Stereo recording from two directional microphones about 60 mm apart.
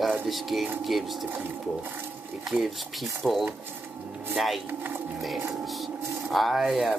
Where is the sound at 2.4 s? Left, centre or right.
Centre.